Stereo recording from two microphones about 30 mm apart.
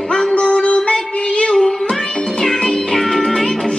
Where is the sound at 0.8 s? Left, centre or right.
Left.